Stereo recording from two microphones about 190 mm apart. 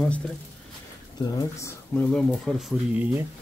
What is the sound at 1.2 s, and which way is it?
Speech, 15° left (ahead or behind).